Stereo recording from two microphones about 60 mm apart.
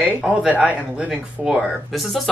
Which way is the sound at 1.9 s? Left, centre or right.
Centre.